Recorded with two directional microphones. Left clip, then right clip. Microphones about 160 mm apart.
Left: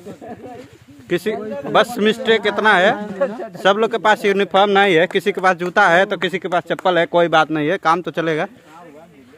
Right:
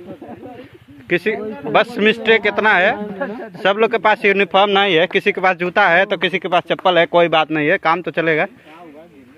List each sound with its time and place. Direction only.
1.0 s a man's voice: 20° left (ahead or behind)